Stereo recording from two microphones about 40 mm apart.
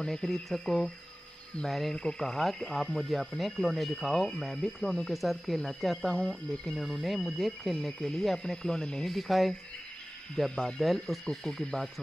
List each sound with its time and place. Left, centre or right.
0.0 s speech: centre
2.0 s speech: centre
6.1 s speech: left
6.8 s speech: centre
7.7 s speech: centre
9.0 s speech: centre
10.5 s speech: left
11.1 s speech: centre
11.6 s speech: centre